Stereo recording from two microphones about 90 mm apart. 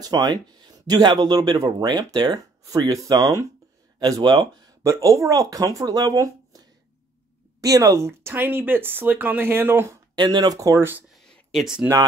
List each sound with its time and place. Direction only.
0.0 s speech: 50° right (ahead or behind)
4.8 s speech: 35° right (ahead or behind)
10.1 s speech: 50° right (ahead or behind)
10.8 s speech: 25° right (ahead or behind)
11.2 s a sound: centre (ahead or behind)